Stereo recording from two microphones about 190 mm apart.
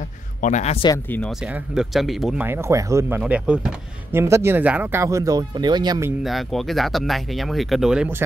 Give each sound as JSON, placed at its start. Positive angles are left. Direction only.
{"t": 0.4, "sound": "a man's voice", "side_deg": 40}
{"t": 1.5, "sound": "speech", "side_deg": 0}
{"t": 6.2, "sound": "speech", "side_deg": 0}